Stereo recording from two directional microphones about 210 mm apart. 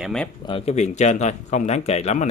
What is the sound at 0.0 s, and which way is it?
Speech, centre (ahead or behind).